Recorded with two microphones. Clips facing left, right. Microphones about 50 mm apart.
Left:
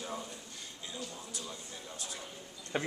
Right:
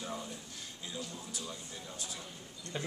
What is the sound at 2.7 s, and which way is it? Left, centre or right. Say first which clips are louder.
Speech: left 5 dB; left.